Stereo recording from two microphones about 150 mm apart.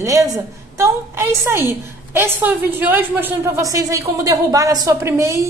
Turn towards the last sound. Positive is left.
turn(degrees=-20)  # may be behind; listen again after turning